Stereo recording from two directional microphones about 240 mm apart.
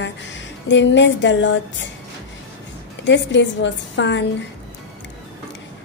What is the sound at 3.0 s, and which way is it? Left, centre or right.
A woman's voice, left.